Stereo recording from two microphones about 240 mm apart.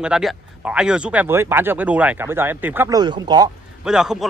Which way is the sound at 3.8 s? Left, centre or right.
Centre.